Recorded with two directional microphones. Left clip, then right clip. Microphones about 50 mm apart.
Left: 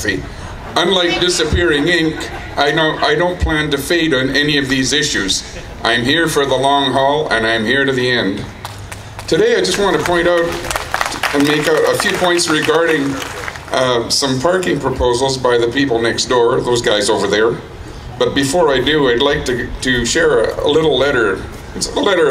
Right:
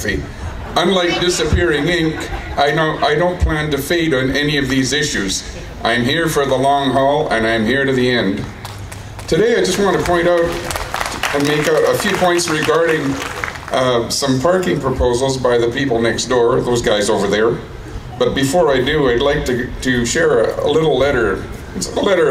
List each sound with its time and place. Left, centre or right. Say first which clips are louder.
0.7 s a man's voice: left 1 dB; left
9.3 s a man's voice: left 1 dB; left
10.7 s a sound: left 3 dB; left
11.8 s a man's voice: left 1 dB; centre
13.7 s a man's voice: left 1 dB; left